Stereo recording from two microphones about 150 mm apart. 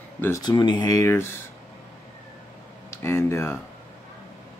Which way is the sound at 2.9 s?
20° left (ahead or behind).